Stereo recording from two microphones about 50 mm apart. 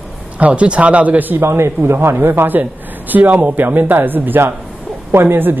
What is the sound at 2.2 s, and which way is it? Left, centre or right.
Speech, right.